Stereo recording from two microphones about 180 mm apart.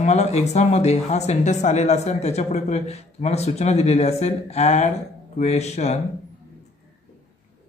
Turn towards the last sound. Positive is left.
turn(degrees=35)  # may be behind; listen again after turning